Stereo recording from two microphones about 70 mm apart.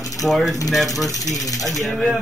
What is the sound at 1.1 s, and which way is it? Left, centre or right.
Speech, left.